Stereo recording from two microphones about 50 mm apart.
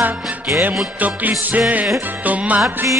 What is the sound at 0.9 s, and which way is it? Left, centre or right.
Music, right.